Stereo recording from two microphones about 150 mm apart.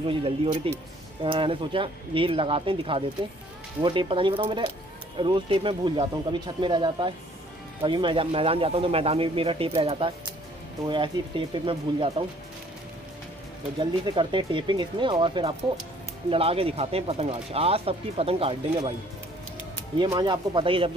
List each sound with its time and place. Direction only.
0.0 s speech: 35° right (ahead or behind)
13.7 s speech: 35° right (ahead or behind)
20.0 s speech: 30° right (ahead or behind)